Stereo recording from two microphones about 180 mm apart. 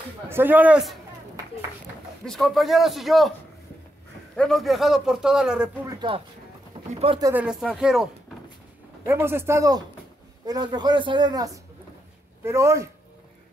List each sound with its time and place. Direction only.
0.3 s speech: 10° right (ahead or behind)
2.2 s a man's voice: centre (ahead or behind)
4.4 s a man's voice: centre (ahead or behind)
5.9 s a man's voice: 25° right (ahead or behind)
7.2 s speech: 20° right (ahead or behind)
7.7 s a man's voice: 5° right (ahead or behind)